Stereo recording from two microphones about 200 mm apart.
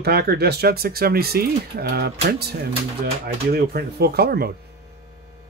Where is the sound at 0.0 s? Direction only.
50° right (ahead or behind).